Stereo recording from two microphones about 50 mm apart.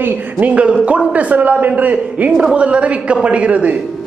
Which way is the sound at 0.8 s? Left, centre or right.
Right.